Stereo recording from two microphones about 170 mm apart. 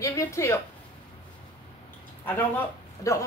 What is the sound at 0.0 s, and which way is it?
Speech, 15° left (ahead or behind).